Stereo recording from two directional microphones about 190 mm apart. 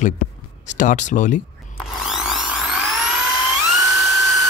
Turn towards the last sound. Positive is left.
turn(degrees=0)  # may be behind; listen again after turning